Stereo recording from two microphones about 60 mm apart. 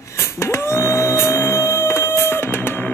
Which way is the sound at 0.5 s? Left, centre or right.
Left.